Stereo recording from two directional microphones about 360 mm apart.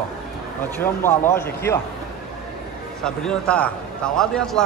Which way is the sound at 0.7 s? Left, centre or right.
Centre.